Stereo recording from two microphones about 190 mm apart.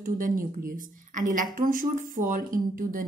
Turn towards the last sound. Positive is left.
turn(degrees=-45)  # may be behind; listen again after turning